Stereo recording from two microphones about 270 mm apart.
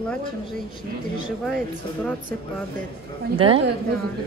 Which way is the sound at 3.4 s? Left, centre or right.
Centre.